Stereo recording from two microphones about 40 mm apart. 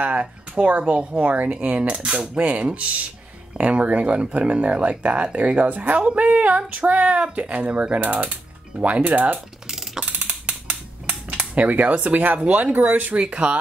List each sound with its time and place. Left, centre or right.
0.0 s speech: right
2.3 s speech: right
10.1 s mechanisms: right
11.5 s speech: right
13.2 s speech: right